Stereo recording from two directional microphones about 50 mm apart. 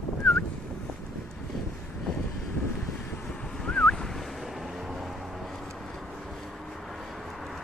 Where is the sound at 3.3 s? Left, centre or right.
Centre.